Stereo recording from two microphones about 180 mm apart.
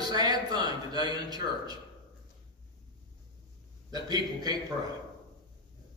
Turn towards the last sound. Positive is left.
turn(degrees=-20)  # may be behind; listen again after turning